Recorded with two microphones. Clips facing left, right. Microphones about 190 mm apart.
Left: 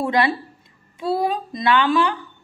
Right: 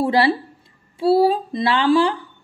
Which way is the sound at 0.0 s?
30° right (ahead or behind).